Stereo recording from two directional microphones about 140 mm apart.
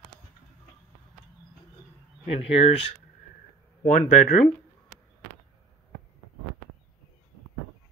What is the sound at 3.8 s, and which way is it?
Speech, 70° left (ahead or behind).